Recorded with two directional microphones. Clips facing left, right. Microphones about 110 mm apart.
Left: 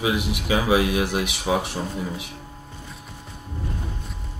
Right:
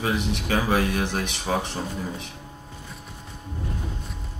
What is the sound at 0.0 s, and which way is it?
Speech, 10° left (ahead or behind).